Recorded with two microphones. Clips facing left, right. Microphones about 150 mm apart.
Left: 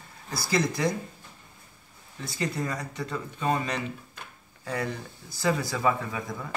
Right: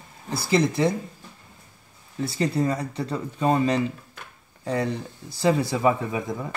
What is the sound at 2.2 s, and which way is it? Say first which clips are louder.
Speech: right 7 dB; 30° right (ahead or behind).